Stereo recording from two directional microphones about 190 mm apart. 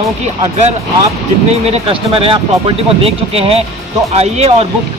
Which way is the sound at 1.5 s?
30° right (ahead or behind).